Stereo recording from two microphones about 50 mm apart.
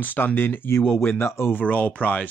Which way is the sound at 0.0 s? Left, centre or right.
Left.